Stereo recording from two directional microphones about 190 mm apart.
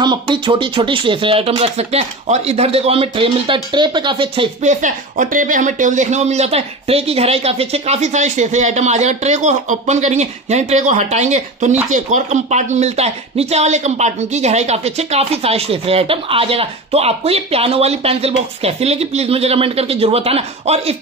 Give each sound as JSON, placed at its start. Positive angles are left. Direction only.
{"t": 0.0, "sound": "speech", "side_deg": -25}
{"t": 4.6, "sound": "speech", "side_deg": -40}